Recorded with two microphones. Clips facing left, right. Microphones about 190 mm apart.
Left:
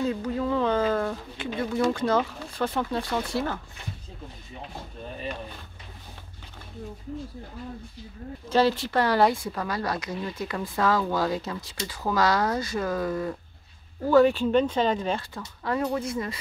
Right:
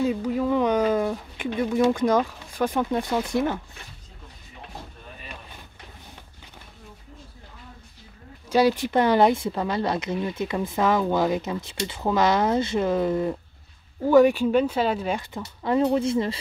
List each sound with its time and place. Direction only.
0.0 s speech: 10° right (ahead or behind)
8.5 s speech: 15° right (ahead or behind)
15.3 s speech: 20° right (ahead or behind)